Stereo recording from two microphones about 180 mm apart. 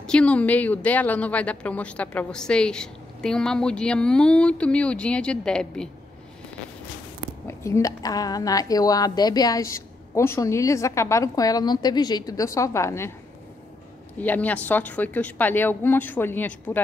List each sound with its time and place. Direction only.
0.0 s a woman's voice: 5° left (ahead or behind)
7.4 s a woman's voice: 15° left (ahead or behind)
14.2 s a woman's voice: 10° left (ahead or behind)